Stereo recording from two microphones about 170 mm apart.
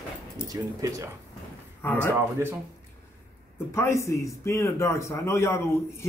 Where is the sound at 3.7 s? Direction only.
15° left (ahead or behind).